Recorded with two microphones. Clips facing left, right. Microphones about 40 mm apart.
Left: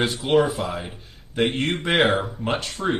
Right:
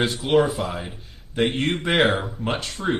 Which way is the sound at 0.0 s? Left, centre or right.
Centre.